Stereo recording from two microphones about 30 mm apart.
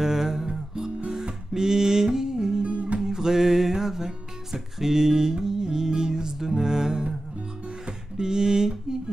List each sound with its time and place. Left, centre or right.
0.0 s music: centre
0.7 s guitar: centre
1.5 s music: centre
2.6 s music: right
3.1 s music: centre
8.2 s a sound: right